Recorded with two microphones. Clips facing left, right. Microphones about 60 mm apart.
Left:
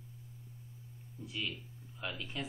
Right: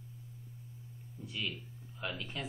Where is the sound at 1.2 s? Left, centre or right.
Centre.